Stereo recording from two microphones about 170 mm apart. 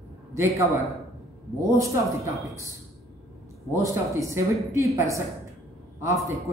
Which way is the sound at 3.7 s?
15° right (ahead or behind).